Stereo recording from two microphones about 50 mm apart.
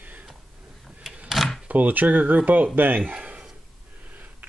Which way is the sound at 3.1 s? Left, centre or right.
Right.